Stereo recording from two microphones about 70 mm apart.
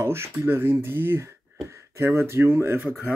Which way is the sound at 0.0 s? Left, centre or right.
Right.